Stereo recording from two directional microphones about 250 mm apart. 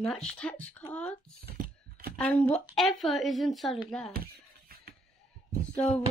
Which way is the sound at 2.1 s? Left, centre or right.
Centre.